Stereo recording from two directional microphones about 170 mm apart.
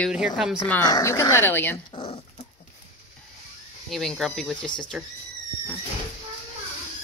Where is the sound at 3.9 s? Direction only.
Centre (ahead or behind).